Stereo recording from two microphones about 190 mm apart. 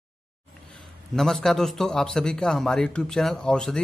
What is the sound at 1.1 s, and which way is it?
A man's voice, centre (ahead or behind).